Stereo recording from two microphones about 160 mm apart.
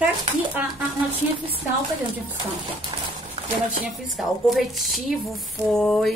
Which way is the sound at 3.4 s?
35° right (ahead or behind).